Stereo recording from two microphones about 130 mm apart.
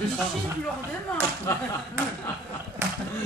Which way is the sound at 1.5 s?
20° left (ahead or behind).